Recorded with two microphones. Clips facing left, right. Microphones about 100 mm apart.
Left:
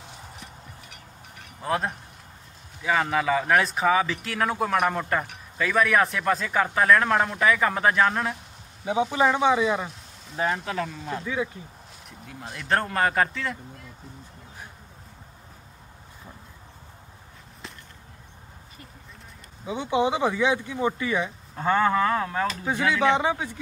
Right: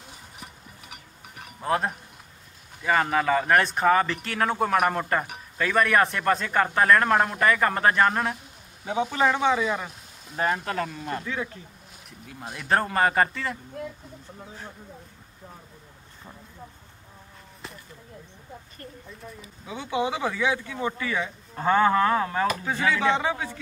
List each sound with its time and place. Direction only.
1.6 s speech: centre (ahead or behind)
9.1 s speech: 15° left (ahead or behind)
10.3 s speech: centre (ahead or behind)
11.2 s speech: 10° left (ahead or behind)
12.1 s speech: centre (ahead or behind)
19.6 s speech: 20° left (ahead or behind)
21.5 s speech: 5° right (ahead or behind)
22.7 s speech: 15° left (ahead or behind)